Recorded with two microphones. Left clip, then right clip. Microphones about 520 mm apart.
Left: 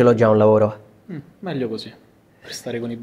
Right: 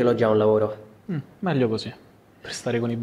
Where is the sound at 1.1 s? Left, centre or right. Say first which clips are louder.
Right 2 dB; right.